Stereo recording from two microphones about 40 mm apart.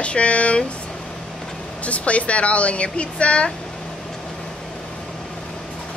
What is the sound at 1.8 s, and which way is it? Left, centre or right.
A woman's voice, left.